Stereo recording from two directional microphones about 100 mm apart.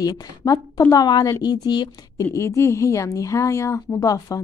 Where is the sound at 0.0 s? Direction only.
40° left (ahead or behind).